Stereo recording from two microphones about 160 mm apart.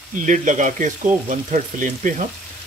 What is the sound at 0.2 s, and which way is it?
Frying, 50° right (ahead or behind).